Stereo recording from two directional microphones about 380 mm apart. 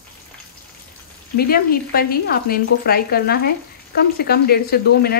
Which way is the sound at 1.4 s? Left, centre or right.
Left.